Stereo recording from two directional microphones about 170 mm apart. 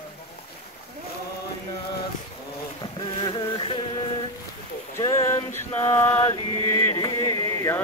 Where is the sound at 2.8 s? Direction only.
30° left (ahead or behind).